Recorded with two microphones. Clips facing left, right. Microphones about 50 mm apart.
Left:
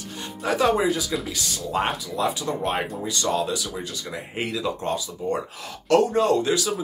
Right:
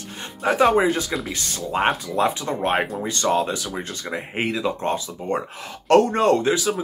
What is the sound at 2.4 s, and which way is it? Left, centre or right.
Speech, right.